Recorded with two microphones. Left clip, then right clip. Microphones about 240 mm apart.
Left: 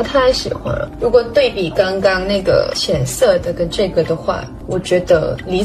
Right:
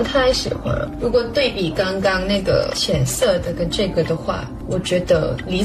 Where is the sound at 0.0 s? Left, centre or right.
Centre.